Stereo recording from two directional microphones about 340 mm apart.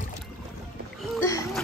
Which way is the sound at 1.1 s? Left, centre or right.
Centre.